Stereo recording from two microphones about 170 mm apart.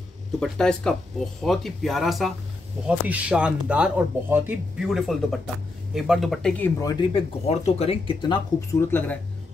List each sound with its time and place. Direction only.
0.4 s speech: 5° left (ahead or behind)
6.6 s speech: 20° left (ahead or behind)
7.2 s speech: 35° left (ahead or behind); by 9.2 s 10° left (ahead or behind)